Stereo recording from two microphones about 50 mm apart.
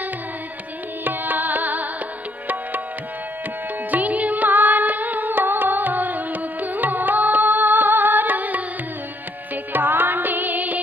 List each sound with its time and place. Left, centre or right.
1.0 s music: right
3.9 s music: right
9.7 s music: right